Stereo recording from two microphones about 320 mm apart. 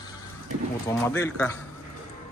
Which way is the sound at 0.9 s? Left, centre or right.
Centre.